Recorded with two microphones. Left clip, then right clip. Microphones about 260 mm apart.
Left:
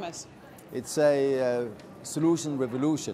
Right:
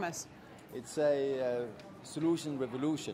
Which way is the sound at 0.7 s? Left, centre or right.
Left.